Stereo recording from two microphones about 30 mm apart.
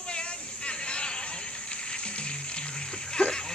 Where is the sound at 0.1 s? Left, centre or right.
Left.